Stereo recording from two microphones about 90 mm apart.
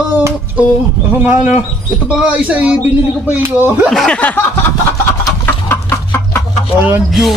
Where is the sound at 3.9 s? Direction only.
5° left (ahead or behind).